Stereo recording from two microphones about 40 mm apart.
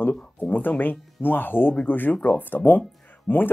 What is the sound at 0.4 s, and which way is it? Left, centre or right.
Speech, left.